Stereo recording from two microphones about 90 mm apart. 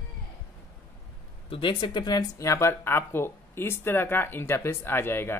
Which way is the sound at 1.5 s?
65° left (ahead or behind).